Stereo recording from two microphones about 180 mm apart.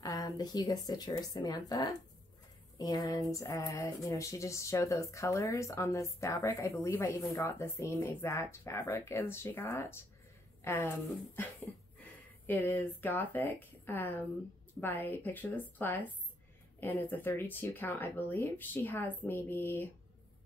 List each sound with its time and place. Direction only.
0.0 s speech: 20° left (ahead or behind)